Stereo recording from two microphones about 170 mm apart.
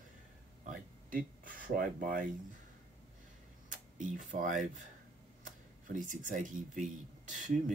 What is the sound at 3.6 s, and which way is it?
Speech, 50° right (ahead or behind).